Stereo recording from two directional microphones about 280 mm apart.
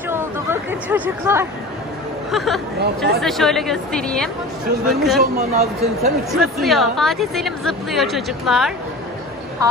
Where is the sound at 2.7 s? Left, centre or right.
Right.